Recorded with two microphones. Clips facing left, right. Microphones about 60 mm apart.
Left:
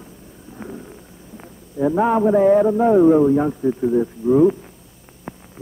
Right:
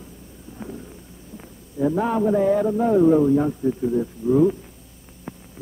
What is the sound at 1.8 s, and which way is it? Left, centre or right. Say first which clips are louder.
Speech: left 4 dB; left.